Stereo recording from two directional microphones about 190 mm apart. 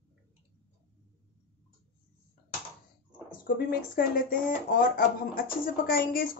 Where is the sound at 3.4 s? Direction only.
50° left (ahead or behind).